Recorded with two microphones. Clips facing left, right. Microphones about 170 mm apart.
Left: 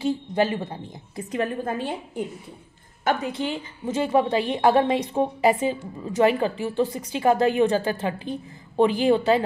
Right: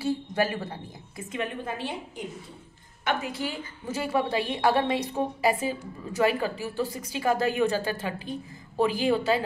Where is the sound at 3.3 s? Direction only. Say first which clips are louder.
Left 5 dB; 20° left (ahead or behind).